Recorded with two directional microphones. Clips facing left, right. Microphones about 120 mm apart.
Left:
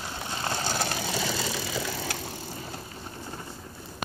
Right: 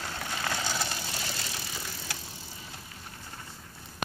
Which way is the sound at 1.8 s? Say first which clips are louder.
Left 8 dB; 85° left.